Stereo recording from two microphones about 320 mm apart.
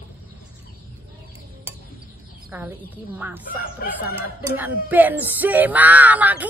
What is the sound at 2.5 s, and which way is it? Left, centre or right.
Speech, centre.